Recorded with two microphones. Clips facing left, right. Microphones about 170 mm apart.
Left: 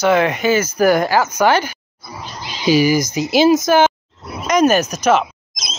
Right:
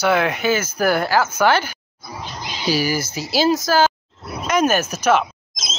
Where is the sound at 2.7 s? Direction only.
15° left (ahead or behind).